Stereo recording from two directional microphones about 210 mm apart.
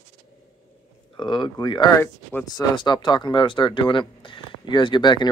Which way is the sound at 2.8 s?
20° left (ahead or behind).